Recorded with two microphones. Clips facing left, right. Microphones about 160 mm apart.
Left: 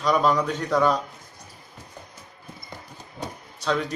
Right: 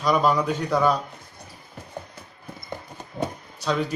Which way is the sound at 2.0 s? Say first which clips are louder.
Right 8 dB; 60° right (ahead or behind).